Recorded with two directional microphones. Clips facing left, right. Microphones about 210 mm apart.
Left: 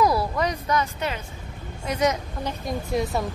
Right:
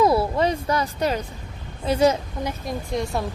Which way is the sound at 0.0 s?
25° right (ahead or behind).